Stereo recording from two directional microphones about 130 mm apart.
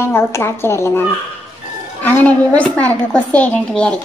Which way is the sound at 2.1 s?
10° left (ahead or behind).